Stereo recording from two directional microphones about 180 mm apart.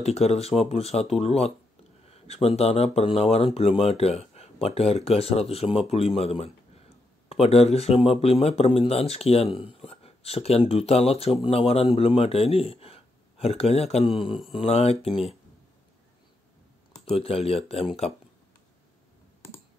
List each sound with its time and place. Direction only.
0.0 s speech: 35° left (ahead or behind)
17.1 s speech: 35° left (ahead or behind)